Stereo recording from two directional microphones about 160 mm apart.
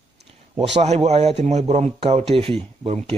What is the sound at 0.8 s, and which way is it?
Speech, 40° right (ahead or behind).